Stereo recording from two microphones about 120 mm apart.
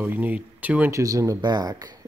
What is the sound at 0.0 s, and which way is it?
Speech, 15° right (ahead or behind).